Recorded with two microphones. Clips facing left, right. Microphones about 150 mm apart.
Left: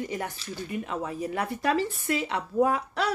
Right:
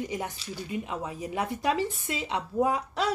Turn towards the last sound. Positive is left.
turn(degrees=-20)  # may be behind; listen again after turning